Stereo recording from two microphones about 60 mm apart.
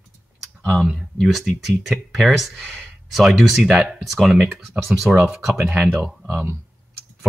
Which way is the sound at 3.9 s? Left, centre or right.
Centre.